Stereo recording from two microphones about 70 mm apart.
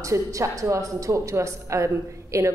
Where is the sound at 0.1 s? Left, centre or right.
Right.